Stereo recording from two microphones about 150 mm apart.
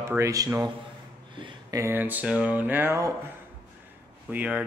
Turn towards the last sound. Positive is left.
turn(degrees=-10)  # may be behind; listen again after turning